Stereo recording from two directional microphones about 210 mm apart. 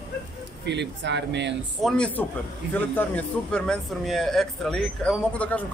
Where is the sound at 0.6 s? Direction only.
55° right (ahead or behind).